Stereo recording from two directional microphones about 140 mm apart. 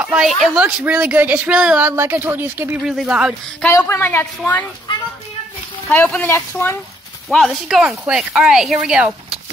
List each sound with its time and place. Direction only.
0.0 s speech: 5° right (ahead or behind)
2.8 s speech: 5° right (ahead or behind)
3.6 s a woman's voice: 15° left (ahead or behind)
5.9 s a woman's voice: 15° left (ahead or behind)
7.2 s speech: centre (ahead or behind)